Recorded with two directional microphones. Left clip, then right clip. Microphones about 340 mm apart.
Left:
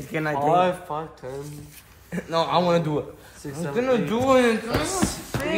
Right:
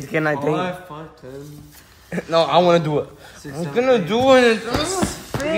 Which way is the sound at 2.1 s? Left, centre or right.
Right.